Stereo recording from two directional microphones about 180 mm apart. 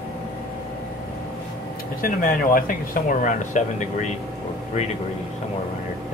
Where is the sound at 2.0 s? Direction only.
50° left (ahead or behind).